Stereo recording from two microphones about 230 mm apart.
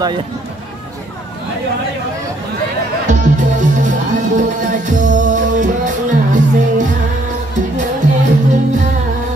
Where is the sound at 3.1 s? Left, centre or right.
Right.